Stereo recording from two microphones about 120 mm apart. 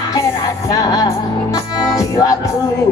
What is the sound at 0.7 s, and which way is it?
Music, 30° left (ahead or behind).